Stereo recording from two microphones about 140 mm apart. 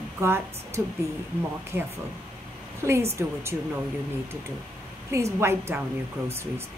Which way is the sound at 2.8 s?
20° right (ahead or behind).